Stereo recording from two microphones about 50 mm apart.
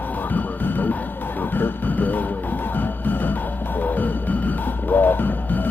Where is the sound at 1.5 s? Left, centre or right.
Left.